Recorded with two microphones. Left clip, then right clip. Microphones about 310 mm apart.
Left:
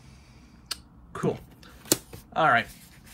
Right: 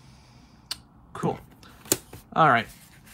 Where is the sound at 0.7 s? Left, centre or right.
Centre.